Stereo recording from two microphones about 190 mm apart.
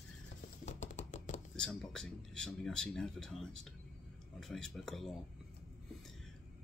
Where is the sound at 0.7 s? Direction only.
40° left (ahead or behind).